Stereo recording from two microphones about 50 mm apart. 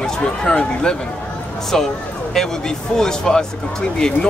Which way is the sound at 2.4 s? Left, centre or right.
Centre.